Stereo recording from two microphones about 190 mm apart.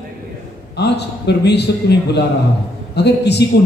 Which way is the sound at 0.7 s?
60° left (ahead or behind).